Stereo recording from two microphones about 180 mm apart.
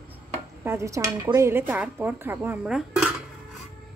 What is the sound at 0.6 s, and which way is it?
Speech, 15° right (ahead or behind).